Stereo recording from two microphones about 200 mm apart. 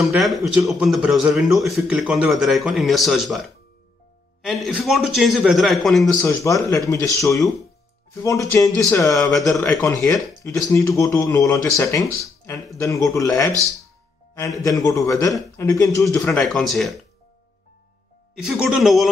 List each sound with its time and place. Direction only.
0.0 s a man's voice: centre (ahead or behind)
6.2 s speech: 15° left (ahead or behind)
9.4 s a man's voice: centre (ahead or behind)
10.0 s speech: 15° left (ahead or behind)
13.5 s speech: 15° right (ahead or behind)
14.3 s speech: 15° left (ahead or behind)
16.3 s a man's voice: centre (ahead or behind)
18.3 s a man's voice: centre (ahead or behind)